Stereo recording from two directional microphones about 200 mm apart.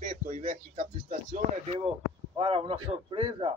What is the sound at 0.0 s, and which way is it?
Speech, 40° right (ahead or behind).